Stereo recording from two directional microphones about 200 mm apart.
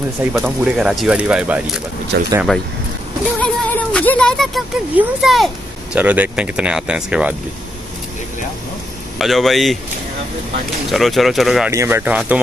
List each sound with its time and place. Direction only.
0.3 s speech: 5° right (ahead or behind)
2.1 s speech: 60° right (ahead or behind)
3.3 s speech: 5° left (ahead or behind)
9.2 s speech: centre (ahead or behind)
10.9 s speech: centre (ahead or behind)
11.7 s speech: 15° right (ahead or behind)